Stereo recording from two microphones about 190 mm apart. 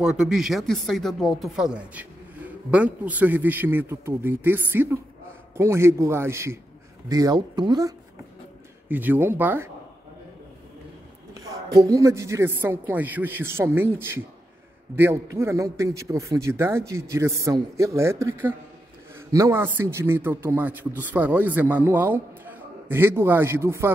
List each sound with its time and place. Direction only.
0.0 s speech: 5° right (ahead or behind); by 7.9 s 20° right (ahead or behind)
8.8 s speech: 10° right (ahead or behind)
11.3 s speech: 20° right (ahead or behind)